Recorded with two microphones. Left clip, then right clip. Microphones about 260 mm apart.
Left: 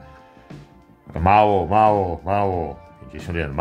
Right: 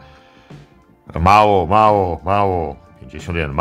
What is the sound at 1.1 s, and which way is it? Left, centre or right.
Speech, centre.